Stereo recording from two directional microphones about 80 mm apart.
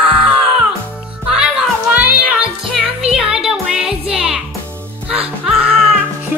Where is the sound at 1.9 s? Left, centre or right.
Right.